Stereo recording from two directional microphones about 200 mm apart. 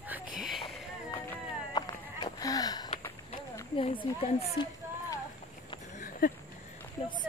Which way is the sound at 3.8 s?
25° left (ahead or behind).